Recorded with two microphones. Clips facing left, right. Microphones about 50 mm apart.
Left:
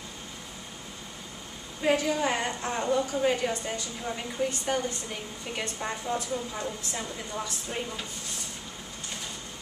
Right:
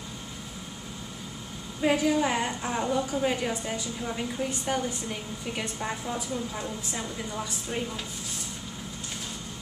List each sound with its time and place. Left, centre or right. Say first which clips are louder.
1.8 s a woman's voice: right 2 dB; centre